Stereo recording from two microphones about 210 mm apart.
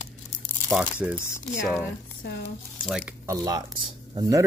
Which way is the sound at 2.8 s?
5° right (ahead or behind).